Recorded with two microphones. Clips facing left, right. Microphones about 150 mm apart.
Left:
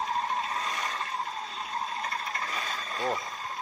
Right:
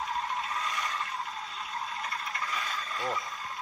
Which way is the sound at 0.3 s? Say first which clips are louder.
Left 2 dB; 30° left (ahead or behind).